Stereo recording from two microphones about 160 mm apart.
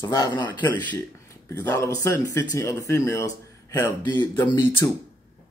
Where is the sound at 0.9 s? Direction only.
15° left (ahead or behind).